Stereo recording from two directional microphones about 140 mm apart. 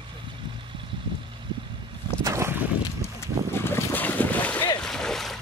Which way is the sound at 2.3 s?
20° right (ahead or behind).